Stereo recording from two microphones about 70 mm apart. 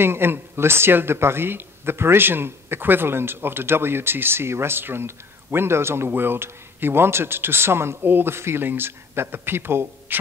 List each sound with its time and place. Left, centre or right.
0.0 s speech: right